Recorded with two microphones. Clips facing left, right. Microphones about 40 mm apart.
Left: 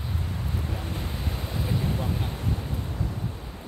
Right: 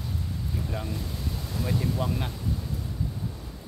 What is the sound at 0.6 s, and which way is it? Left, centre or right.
Waves, left.